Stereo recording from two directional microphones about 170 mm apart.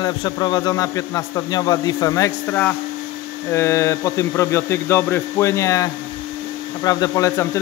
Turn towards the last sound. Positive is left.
turn(degrees=20)  # may be behind; listen again after turning